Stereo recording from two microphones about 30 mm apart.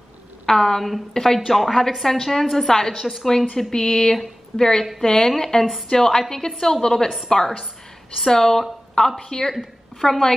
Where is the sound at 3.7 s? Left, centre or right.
Left.